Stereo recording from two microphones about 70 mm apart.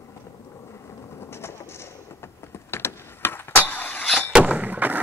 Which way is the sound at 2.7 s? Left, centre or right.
Left.